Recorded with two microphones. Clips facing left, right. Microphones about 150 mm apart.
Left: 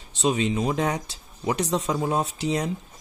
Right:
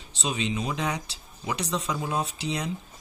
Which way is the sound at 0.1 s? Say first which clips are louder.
Left 6 dB; 45° left (ahead or behind).